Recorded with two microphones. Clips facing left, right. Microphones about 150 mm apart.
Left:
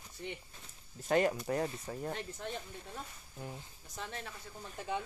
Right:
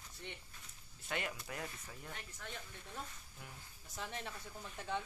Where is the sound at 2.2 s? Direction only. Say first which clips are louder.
Left 9 dB; 25° left (ahead or behind).